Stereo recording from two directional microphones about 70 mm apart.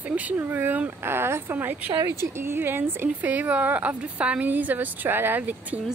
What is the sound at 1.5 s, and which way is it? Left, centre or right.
Speech, right.